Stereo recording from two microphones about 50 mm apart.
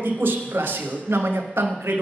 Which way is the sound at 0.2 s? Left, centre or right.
Right.